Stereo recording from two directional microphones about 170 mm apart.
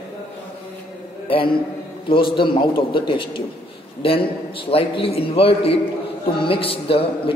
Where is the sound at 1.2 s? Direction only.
30° left (ahead or behind).